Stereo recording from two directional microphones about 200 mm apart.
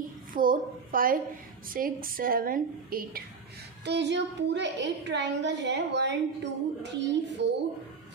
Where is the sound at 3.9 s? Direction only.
60° right (ahead or behind).